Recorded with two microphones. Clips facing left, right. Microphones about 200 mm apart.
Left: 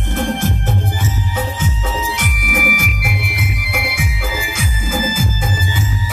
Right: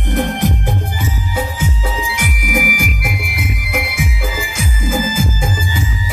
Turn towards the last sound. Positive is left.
turn(degrees=5)  # may be behind; listen again after turning